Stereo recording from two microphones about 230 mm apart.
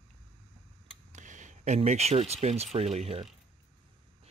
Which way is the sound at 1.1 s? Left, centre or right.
Right.